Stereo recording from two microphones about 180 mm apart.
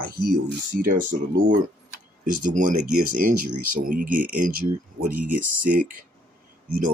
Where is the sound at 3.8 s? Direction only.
50° right (ahead or behind).